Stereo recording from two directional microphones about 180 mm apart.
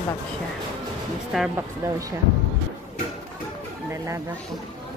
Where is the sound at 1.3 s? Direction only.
Centre (ahead or behind).